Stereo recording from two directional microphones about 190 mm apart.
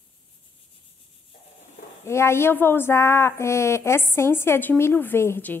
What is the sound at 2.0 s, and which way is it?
Speech, 15° left (ahead or behind).